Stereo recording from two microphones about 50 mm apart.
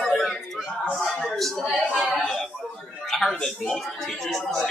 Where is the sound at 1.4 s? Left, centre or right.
Centre.